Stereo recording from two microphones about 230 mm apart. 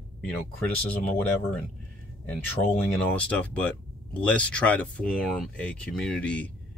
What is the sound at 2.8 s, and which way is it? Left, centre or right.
Speech, centre.